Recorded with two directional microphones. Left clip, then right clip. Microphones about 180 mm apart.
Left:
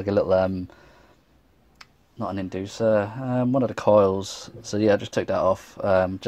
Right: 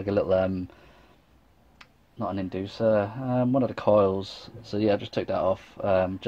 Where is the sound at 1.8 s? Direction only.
15° left (ahead or behind).